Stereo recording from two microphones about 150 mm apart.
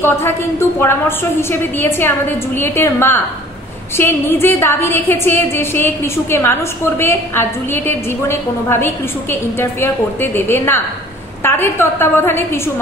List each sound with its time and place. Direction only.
0.0 s a woman's voice: 15° left (ahead or behind)